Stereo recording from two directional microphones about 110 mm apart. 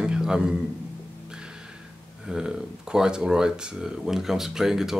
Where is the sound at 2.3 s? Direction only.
5° right (ahead or behind).